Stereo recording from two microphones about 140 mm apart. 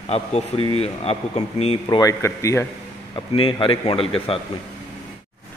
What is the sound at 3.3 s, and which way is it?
A man's voice, 40° left (ahead or behind).